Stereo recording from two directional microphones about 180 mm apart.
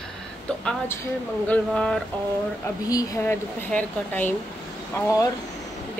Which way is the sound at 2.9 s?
20° left (ahead or behind).